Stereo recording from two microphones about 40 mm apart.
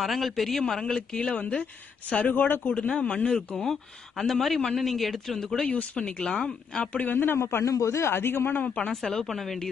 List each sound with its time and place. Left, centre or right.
0.0 s a man's voice: centre
0.8 s speech: left
2.2 s speech: left
2.7 s speech: left
4.2 s a man's voice: centre
5.9 s speech: left
6.9 s speech: left
7.2 s a man's voice: left
8.9 s speech: centre